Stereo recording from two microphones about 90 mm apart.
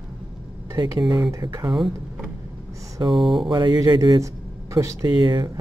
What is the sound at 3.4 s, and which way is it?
Speech, 55° right (ahead or behind).